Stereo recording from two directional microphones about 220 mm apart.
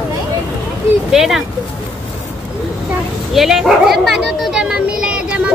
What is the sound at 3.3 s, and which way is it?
Speech, centre (ahead or behind).